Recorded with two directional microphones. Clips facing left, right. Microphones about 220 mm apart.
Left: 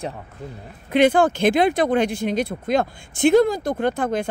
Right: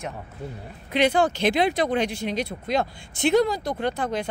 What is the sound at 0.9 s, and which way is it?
Speech, 50° left (ahead or behind).